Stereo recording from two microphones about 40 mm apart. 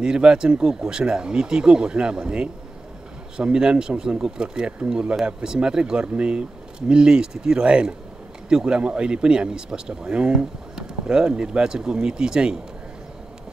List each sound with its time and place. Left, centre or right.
0.0 s speech: right
3.5 s speech: right